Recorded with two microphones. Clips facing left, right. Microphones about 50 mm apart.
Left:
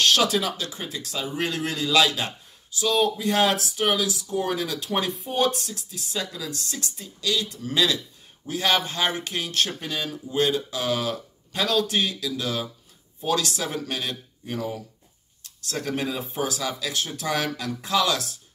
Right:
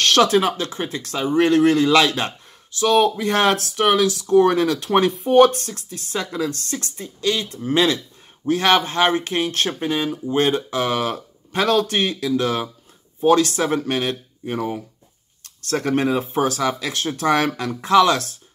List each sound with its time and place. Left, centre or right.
0.0 s speech: right
10.1 s speech: right